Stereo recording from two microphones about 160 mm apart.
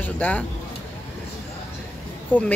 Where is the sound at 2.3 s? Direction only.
10° left (ahead or behind).